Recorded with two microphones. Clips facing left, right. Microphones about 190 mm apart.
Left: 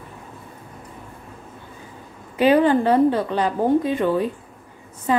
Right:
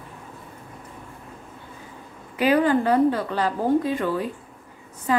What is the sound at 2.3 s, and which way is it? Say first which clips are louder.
A woman's voice: left 3 dB; 25° left (ahead or behind).